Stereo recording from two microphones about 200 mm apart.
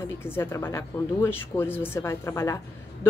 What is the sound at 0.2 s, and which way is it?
Speech, 10° left (ahead or behind).